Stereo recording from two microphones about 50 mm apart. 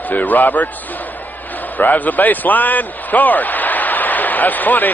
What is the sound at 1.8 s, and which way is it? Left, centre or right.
A man's voice, left.